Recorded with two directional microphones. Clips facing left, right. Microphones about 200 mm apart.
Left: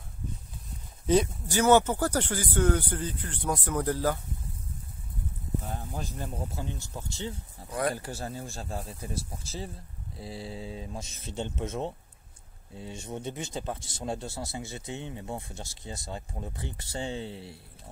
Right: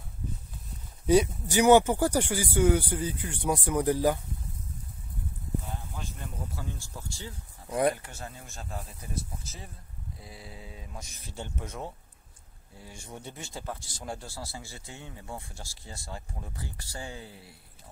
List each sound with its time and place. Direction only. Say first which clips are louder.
1.0 s speech: right 2 dB; 10° right (ahead or behind)
5.7 s speech: left 4 dB; 40° left (ahead or behind); by 7.3 s 20° left (ahead or behind)
7.9 s a man's voice: left 6 dB; 35° left (ahead or behind)